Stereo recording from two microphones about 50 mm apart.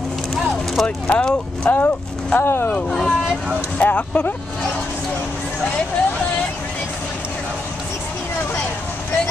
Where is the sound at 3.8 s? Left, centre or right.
Left.